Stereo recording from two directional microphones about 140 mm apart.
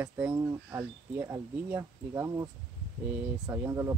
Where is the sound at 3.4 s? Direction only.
20° right (ahead or behind).